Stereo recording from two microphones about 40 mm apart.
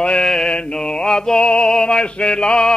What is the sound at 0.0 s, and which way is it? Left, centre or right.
Mantra, left.